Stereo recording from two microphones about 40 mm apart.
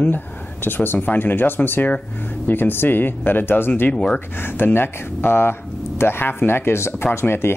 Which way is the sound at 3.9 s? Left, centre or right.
Left.